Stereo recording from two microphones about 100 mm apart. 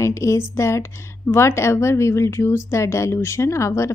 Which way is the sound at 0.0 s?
30° left (ahead or behind).